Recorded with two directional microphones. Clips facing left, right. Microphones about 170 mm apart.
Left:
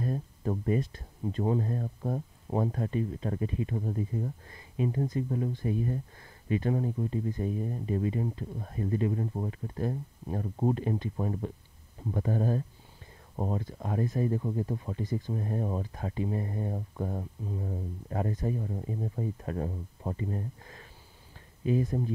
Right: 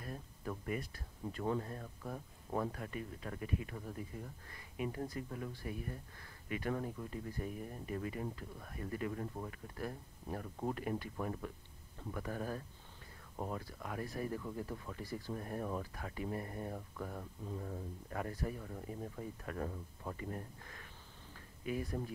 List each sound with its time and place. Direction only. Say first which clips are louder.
0.0 s speech: left 12 dB; 35° left (ahead or behind)